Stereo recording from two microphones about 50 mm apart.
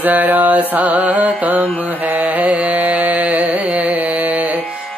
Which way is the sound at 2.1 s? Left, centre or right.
Right.